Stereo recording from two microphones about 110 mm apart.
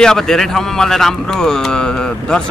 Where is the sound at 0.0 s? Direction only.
5° left (ahead or behind).